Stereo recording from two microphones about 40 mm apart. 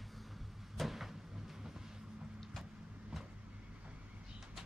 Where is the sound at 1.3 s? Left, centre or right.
Centre.